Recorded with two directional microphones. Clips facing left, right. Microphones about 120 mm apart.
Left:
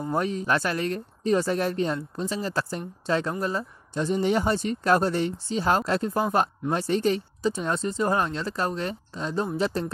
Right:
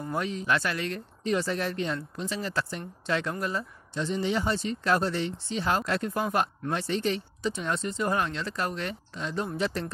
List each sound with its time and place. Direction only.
0.1 s speech: 40° left (ahead or behind)